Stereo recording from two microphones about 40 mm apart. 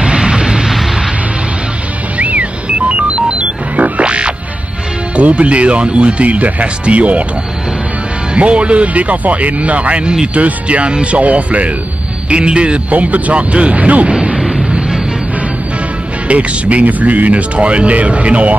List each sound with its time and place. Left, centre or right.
0.0 s a sound: right
2.1 s music: right
4.0 s music: right
5.1 s speech: right
8.4 s a man's voice: right
14.3 s music: centre
14.7 s vehicle: right
16.3 s speech: right